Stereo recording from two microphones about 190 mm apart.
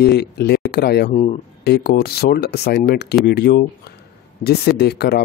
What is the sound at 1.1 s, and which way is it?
Speech, 35° left (ahead or behind).